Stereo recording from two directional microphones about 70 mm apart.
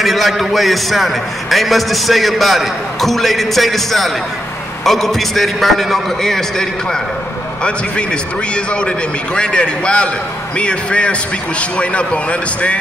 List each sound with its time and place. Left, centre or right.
0.0 s a man's voice: centre